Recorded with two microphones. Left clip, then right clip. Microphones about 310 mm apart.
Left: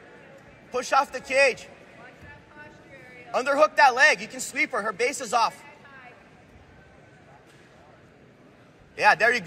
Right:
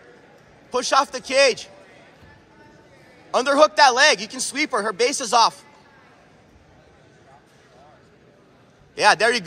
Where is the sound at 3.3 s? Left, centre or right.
Centre.